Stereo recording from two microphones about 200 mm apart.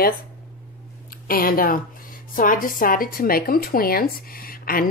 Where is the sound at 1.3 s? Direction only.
45° left (ahead or behind).